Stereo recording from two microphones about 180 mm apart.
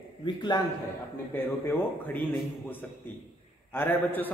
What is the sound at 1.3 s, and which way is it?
Speech, 10° left (ahead or behind).